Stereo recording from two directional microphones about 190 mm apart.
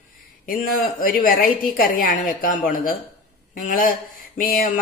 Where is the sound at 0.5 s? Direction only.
45° left (ahead or behind).